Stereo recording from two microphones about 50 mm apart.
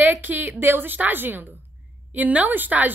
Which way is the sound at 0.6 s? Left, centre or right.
Right.